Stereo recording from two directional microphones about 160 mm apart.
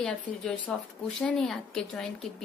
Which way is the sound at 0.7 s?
5° left (ahead or behind).